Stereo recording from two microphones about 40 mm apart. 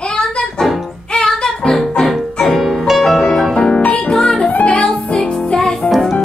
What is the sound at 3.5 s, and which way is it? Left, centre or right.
Music, centre.